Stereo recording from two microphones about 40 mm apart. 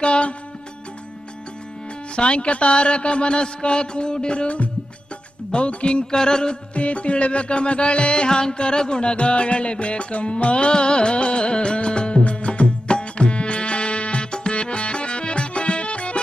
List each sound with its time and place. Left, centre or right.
0.0 s a man's voice: left
2.1 s a man's voice: left
6.7 s music: left